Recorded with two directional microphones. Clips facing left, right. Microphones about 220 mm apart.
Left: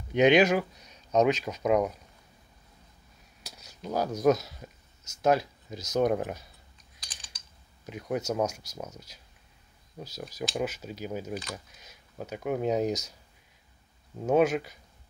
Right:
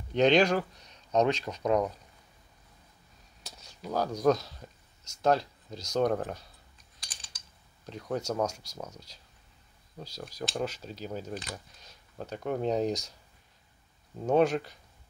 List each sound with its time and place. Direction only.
0.1 s speech: 10° left (ahead or behind)
3.4 s a sound: centre (ahead or behind)
3.9 s speech: 5° left (ahead or behind)
7.8 s speech: 5° left (ahead or behind)
9.9 s speech: 20° left (ahead or behind)
10.2 s speech: 5° left (ahead or behind)
14.2 s speech: centre (ahead or behind)